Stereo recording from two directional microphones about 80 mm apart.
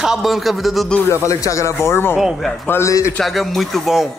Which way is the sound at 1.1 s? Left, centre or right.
Left.